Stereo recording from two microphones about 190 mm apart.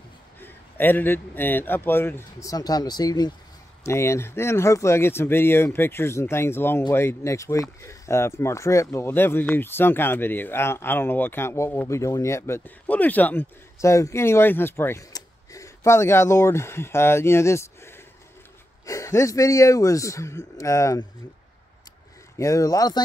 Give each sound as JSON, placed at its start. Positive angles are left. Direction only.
{"t": 0.4, "sound": "speech", "side_deg": 10}
{"t": 22.4, "sound": "speech", "side_deg": 15}